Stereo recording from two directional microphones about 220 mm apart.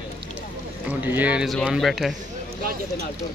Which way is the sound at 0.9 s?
10° right (ahead or behind).